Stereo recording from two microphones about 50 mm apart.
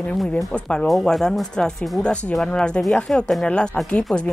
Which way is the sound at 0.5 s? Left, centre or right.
Left.